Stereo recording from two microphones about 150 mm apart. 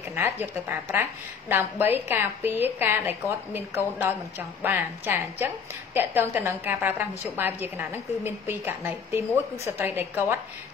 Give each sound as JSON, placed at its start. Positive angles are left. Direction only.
{"t": 0.1, "sound": "a woman's voice", "side_deg": -15}